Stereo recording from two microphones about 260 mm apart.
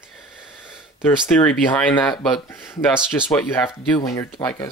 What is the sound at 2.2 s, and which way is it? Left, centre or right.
Speech, centre.